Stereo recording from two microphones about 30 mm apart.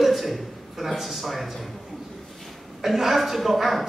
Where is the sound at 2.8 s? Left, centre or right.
Centre.